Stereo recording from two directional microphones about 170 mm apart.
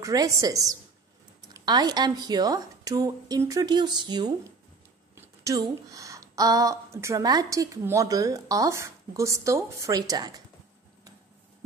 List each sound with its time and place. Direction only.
0.0 s a woman's voice: 20° right (ahead or behind)